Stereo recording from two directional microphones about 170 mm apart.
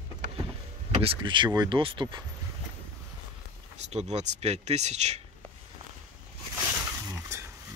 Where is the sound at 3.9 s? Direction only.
40° right (ahead or behind).